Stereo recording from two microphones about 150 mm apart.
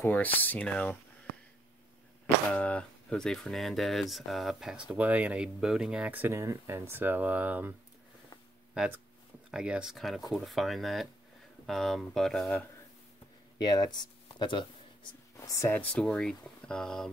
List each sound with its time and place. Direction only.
0.0 s speech: 10° left (ahead or behind)
2.5 s speech: 10° left (ahead or behind); by 7.7 s 10° right (ahead or behind)
9.5 s speech: 5° right (ahead or behind)
13.6 s speech: 25° left (ahead or behind)
15.3 s speech: 20° left (ahead or behind); by 17.1 s 5° left (ahead or behind)